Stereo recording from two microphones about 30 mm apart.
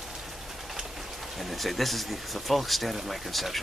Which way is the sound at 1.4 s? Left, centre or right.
Centre.